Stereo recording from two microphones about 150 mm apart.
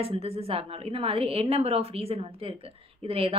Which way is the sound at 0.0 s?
40° right (ahead or behind).